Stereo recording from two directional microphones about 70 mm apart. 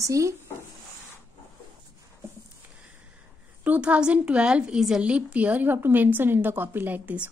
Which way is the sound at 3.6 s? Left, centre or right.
Centre.